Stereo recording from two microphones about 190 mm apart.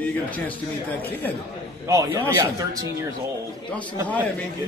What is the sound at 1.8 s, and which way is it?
Speech, 15° right (ahead or behind).